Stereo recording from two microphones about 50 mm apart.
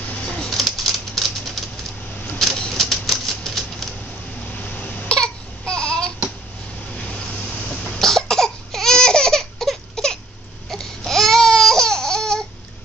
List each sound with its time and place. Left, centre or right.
0.1 s a sound: left
0.4 s typewriter: centre
2.3 s a sound: centre
2.7 s typewriter: centre
4.6 s cough: left
5.0 s baby cry: centre
8.0 s cough: centre
10.7 s babbling: centre